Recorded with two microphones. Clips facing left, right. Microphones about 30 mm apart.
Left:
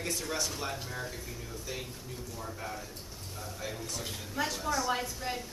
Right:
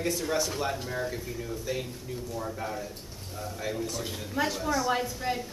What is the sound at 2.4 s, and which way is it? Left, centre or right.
Speech, centre.